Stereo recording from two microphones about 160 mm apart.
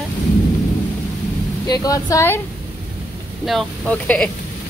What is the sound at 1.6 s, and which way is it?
Speech, 20° left (ahead or behind).